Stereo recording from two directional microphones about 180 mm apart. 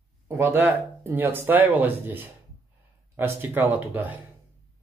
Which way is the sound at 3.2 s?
10° right (ahead or behind).